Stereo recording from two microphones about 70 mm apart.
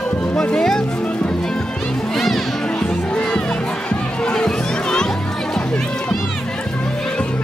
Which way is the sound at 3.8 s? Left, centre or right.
Centre.